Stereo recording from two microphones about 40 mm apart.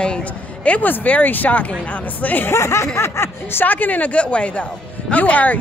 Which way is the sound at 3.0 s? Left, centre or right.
Left.